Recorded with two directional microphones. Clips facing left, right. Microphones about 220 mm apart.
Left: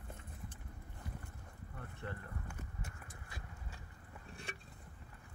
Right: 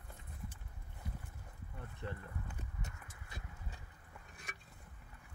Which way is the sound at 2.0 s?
20° right (ahead or behind).